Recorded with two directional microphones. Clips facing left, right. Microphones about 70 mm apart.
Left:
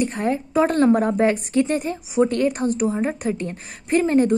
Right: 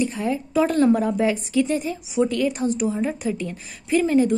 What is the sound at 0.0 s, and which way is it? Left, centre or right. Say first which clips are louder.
A woman's voice: left 2 dB; left.